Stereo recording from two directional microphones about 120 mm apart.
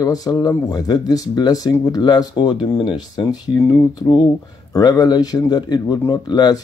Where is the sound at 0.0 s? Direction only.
30° left (ahead or behind).